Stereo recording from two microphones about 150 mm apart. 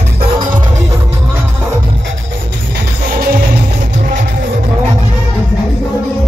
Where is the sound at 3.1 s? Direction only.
90° right.